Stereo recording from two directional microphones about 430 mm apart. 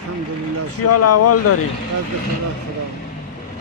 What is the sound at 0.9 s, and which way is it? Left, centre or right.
Speech, left.